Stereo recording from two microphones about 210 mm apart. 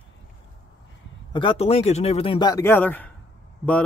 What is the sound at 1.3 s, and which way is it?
Speech, 25° left (ahead or behind).